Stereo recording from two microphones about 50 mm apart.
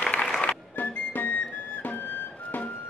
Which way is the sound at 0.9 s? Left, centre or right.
Left.